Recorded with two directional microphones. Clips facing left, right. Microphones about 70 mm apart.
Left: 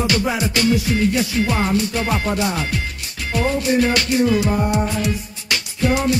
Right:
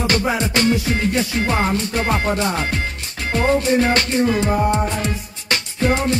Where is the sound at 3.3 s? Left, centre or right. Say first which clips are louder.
Right 2 dB; right.